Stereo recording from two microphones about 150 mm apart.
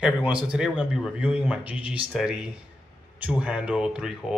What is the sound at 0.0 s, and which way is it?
Speech, 5° right (ahead or behind).